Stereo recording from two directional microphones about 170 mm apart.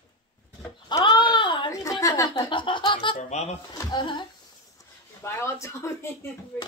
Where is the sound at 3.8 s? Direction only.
25° left (ahead or behind).